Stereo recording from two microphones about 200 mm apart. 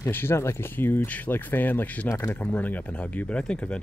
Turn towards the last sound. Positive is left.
turn(degrees=5)  # may be behind; listen again after turning